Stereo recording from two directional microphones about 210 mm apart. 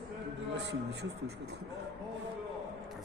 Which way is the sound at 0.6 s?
55° right (ahead or behind).